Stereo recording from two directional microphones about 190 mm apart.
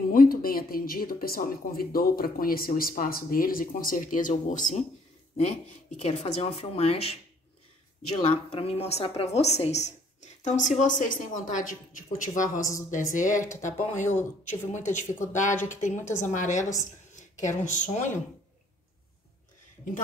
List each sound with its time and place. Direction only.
0.1 s a woman's voice: 50° left (ahead or behind)